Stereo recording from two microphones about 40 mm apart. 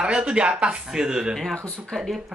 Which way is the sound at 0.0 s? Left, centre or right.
Right.